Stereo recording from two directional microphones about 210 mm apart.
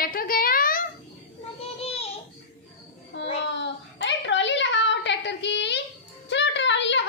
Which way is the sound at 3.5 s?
55° left (ahead or behind).